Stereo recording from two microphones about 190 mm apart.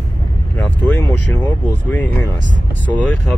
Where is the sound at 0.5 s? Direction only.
10° left (ahead or behind).